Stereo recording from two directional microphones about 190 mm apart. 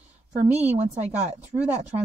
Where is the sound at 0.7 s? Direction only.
35° right (ahead or behind).